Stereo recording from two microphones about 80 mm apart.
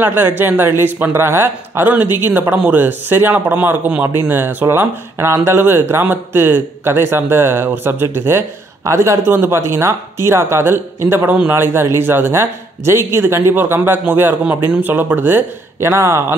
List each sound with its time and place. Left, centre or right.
0.0 s speech: right